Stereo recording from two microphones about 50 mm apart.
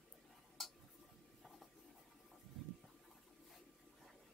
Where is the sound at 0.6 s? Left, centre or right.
Centre.